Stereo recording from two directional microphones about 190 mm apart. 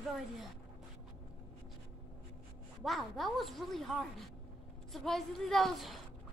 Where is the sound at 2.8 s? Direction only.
Centre (ahead or behind).